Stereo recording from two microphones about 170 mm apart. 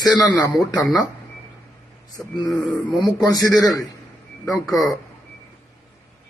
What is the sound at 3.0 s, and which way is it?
Speech, 20° left (ahead or behind).